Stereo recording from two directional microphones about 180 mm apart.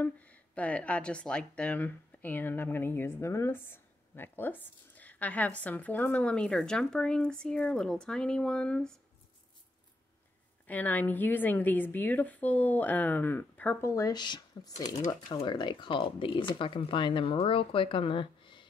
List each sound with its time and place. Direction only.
0.0 s speech: 10° left (ahead or behind)
10.7 s speech: 10° left (ahead or behind); by 18.7 s 25° left (ahead or behind)